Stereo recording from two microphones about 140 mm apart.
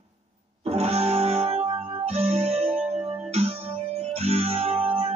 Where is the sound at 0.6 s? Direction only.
50° right (ahead or behind).